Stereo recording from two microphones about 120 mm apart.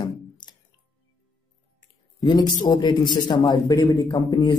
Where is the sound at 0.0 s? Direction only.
35° left (ahead or behind).